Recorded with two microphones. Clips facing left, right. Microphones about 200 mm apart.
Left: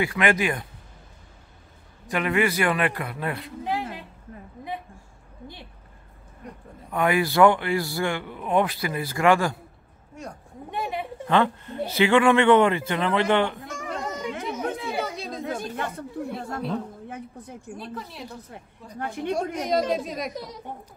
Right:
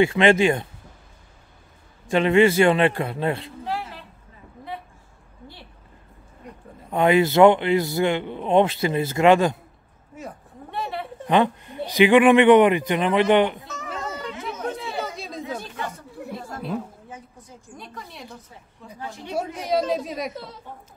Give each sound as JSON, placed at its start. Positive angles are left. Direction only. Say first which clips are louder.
{"t": 0.0, "sound": "a man's voice", "louder": "right 6 dB", "side_deg": -25}
{"t": 2.0, "sound": "a man's voice", "louder": "right 7 dB", "side_deg": -25}
{"t": 3.6, "sound": "a sound", "louder": "left 2 dB", "side_deg": 15}
{"t": 6.9, "sound": "a man's voice", "louder": "right 5 dB", "side_deg": -25}
{"t": 10.2, "sound": "speech", "louder": "right 1 dB", "side_deg": -5}
{"t": 10.7, "sound": "a sound", "louder": "even", "side_deg": 15}
{"t": 11.2, "sound": "speech", "louder": "right 2 dB", "side_deg": -15}
{"t": 14.2, "sound": "chatter", "louder": "left 1 dB", "side_deg": 10}
{"t": 15.0, "sound": "a sound", "louder": "left 1 dB", "side_deg": 0}
{"t": 17.7, "sound": "a woman's voice", "louder": "left 2 dB", "side_deg": 5}
{"t": 18.9, "sound": "speech", "louder": "left 7 dB", "side_deg": 55}
{"t": 19.3, "sound": "a woman's voice", "louder": "right 2 dB", "side_deg": -5}
{"t": 20.3, "sound": "speech", "louder": "left 2 dB", "side_deg": 15}